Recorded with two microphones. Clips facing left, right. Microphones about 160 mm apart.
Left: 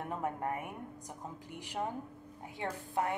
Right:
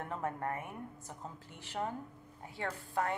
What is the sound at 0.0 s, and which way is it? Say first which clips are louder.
A woman's voice: left 1 dB; 15° left (ahead or behind).